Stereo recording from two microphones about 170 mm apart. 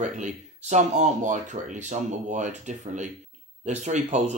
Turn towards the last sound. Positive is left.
turn(degrees=-45)  # may be behind; listen again after turning